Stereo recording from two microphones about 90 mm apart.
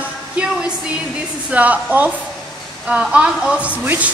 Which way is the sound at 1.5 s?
15° right (ahead or behind).